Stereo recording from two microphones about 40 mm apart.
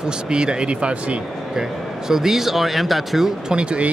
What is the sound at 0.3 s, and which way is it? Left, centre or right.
Speech, right.